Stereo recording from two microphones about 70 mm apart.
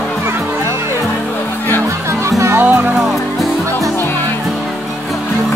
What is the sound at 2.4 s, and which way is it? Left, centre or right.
Music, right.